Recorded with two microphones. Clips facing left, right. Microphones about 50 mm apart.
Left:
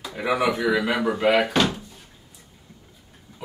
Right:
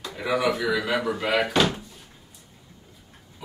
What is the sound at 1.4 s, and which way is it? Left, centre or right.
Speech, centre.